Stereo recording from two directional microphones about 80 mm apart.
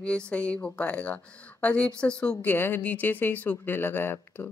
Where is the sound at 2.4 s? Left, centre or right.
Left.